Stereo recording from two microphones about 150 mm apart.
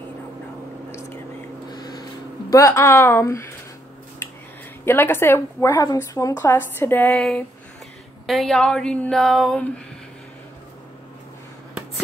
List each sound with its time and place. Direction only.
1.7 s a sound: 25° left (ahead or behind)
2.5 s a woman's voice: 20° left (ahead or behind)
4.8 s a woman's voice: 15° left (ahead or behind)
7.2 s speech: centre (ahead or behind)